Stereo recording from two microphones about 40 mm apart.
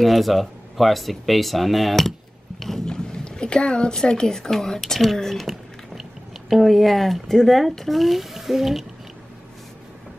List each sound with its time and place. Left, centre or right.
0.0 s speech: centre
2.6 s a sound: centre
2.9 s boat: left
3.9 s speech: centre